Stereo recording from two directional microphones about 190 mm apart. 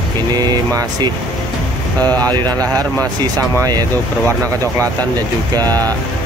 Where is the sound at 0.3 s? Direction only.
20° right (ahead or behind).